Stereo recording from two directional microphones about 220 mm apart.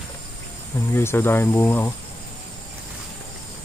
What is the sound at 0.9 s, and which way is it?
Speech, 10° left (ahead or behind).